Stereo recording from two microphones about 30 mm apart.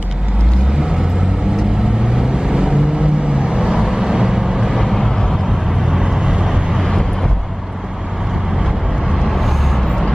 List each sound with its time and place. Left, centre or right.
2.1 s vehicle: right
4.7 s vehicle: centre
5.9 s vehicle: right
9.3 s vehicle: centre